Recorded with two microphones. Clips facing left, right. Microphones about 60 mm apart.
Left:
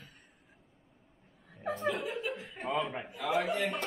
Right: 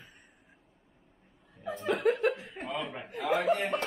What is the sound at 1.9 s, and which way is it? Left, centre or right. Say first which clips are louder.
Chuckle: right 9 dB; right.